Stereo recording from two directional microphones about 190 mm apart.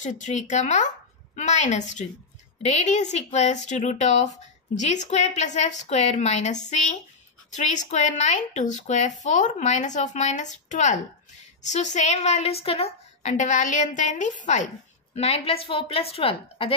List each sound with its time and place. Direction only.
0.0 s speech: 40° left (ahead or behind)